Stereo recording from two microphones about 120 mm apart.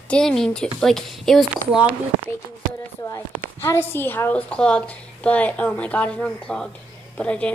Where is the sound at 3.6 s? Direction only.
20° left (ahead or behind).